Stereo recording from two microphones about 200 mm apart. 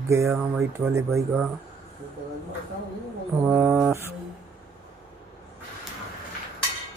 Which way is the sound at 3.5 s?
5° right (ahead or behind).